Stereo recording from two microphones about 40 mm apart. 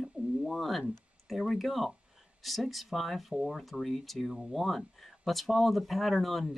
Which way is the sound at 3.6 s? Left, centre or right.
Centre.